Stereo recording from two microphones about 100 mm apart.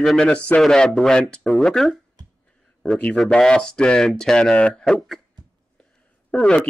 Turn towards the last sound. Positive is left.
turn(degrees=10)  # may be behind; listen again after turning